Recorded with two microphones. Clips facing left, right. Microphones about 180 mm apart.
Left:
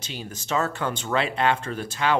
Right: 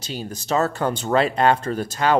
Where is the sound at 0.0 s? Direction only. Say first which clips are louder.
Right 5 dB; 40° right (ahead or behind).